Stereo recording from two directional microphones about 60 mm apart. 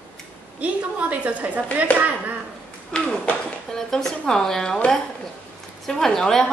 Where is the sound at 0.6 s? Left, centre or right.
Right.